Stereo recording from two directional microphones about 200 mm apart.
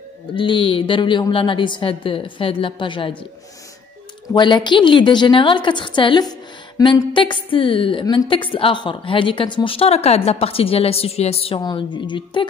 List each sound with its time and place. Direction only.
0.4 s a woman's voice: 25° left (ahead or behind)
4.3 s a woman's voice: 25° left (ahead or behind)